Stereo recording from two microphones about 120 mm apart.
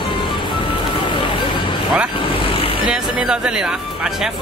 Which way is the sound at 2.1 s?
45° left (ahead or behind).